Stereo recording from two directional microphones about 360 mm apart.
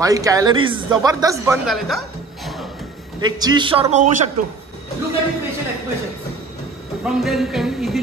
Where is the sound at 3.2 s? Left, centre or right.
Centre.